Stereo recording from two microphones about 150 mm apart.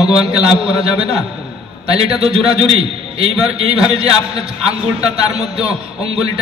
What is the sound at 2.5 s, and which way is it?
A man's voice, 40° right (ahead or behind).